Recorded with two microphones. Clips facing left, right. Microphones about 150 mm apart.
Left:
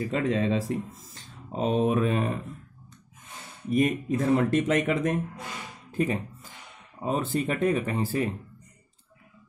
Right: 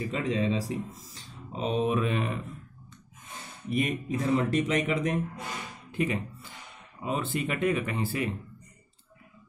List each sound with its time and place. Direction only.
0.0 s speech: 50° left (ahead or behind)
3.7 s speech: 45° left (ahead or behind)
5.9 s music: 40° left (ahead or behind)
7.0 s speech: 40° left (ahead or behind)